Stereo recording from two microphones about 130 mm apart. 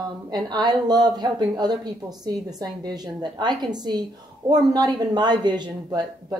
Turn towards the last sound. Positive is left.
turn(degrees=-30)  # may be behind; listen again after turning